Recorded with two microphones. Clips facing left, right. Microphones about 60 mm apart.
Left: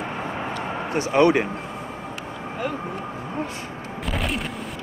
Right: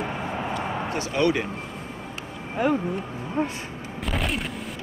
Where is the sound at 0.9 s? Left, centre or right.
Left.